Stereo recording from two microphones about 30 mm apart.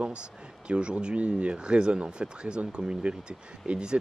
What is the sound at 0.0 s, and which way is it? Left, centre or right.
Speech, right.